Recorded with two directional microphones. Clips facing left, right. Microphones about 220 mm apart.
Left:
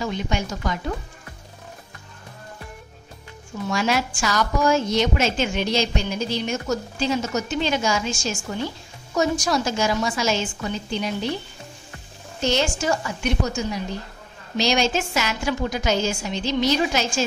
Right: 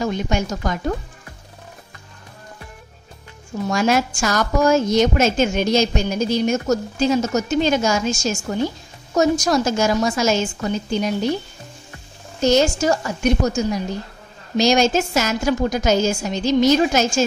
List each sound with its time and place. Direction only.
0.0 s a woman's voice: 45° right (ahead or behind)
3.6 s a woman's voice: 45° right (ahead or behind)
12.4 s a woman's voice: 40° right (ahead or behind)